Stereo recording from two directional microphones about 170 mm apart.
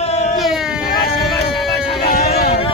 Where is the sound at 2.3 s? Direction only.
40° left (ahead or behind).